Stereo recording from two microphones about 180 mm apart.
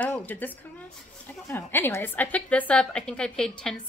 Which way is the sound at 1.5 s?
15° left (ahead or behind).